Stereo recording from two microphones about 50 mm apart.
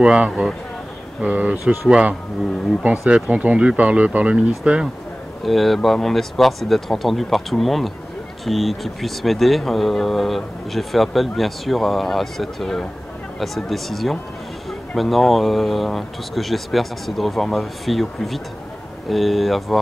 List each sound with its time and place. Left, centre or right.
0.0 s speech: centre
1.2 s speech: right
5.4 s speech: centre